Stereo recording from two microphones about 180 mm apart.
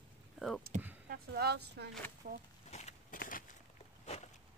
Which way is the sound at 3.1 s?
50° left (ahead or behind).